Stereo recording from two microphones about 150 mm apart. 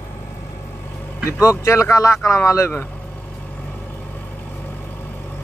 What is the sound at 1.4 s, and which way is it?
Speech, 20° left (ahead or behind).